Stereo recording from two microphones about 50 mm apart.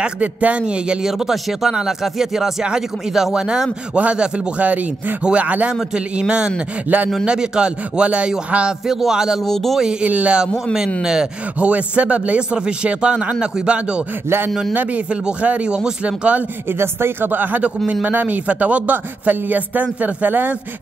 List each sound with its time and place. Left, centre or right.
0.0 s speech: right
1.0 s speech: centre; by 5.7 s right
5.9 s speech: centre
6.9 s a man's voice: right
7.2 s speech: centre
8.8 s speech: centre
9.4 s speech: centre
10.0 s speech: right
11.0 s speech: centre
11.6 s speech: right
15.4 s speech: right
16.7 s a man's voice: right